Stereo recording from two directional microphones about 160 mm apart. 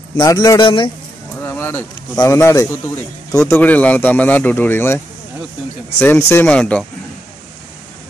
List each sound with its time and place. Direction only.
0.2 s speech: 20° left (ahead or behind)
1.4 s a sound: 15° left (ahead or behind)
2.1 s speech: 20° left (ahead or behind)